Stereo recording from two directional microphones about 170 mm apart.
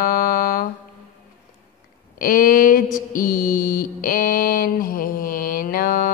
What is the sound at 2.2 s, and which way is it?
Mantra, 55° left (ahead or behind).